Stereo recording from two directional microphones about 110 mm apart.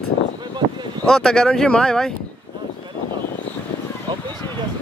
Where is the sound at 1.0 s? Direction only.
5° left (ahead or behind).